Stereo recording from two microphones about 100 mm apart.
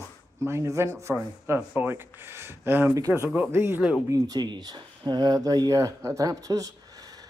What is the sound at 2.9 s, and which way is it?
Speech, 30° right (ahead or behind).